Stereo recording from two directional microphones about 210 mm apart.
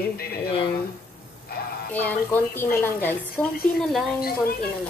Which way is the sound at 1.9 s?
5° left (ahead or behind).